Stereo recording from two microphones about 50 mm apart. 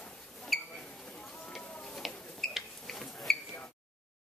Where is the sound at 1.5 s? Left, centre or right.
Centre.